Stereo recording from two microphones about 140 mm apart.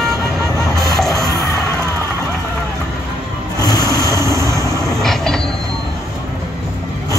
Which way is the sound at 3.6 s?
25° left (ahead or behind).